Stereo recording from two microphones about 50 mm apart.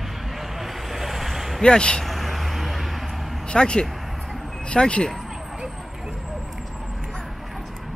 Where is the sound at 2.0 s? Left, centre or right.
Centre.